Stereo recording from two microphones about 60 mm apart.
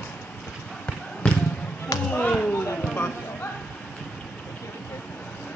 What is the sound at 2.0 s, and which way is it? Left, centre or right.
Chop, left.